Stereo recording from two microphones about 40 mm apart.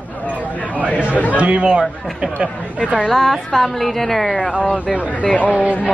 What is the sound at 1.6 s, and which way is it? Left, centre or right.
Speech, centre.